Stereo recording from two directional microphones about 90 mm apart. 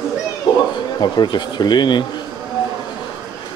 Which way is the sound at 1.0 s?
55° left (ahead or behind).